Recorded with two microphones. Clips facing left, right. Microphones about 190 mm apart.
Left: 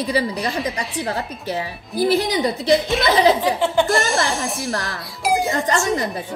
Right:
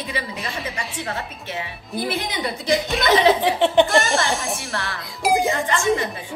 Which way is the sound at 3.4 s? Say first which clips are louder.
Right 2 dB; 20° right (ahead or behind).